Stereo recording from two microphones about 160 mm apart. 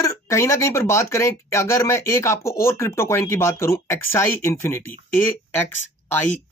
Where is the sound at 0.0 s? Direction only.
20° left (ahead or behind).